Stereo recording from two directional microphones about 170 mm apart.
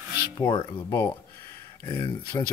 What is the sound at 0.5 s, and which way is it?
Speech, 25° left (ahead or behind).